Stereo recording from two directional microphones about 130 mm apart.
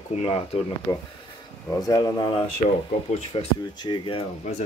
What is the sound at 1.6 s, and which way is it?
Speech, 25° left (ahead or behind).